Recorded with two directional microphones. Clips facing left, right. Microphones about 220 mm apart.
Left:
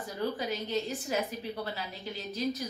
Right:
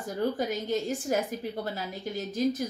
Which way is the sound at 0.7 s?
45° right (ahead or behind).